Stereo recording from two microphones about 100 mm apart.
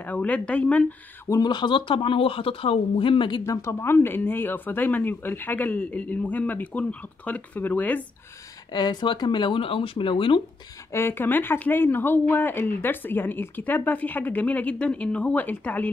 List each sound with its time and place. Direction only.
0.0 s speech: 15° left (ahead or behind)
1.4 s speech: 50° left (ahead or behind)
3.4 s speech: 25° left (ahead or behind)
8.7 s speech: 45° left (ahead or behind)
10.9 s speech: 25° left (ahead or behind)